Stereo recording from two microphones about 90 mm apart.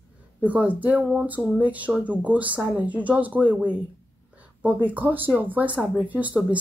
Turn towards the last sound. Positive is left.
turn(degrees=-15)  # may be behind; listen again after turning